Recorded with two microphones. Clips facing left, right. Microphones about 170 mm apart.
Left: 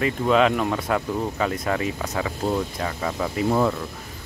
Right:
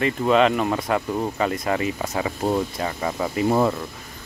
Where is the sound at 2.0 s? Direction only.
15° right (ahead or behind).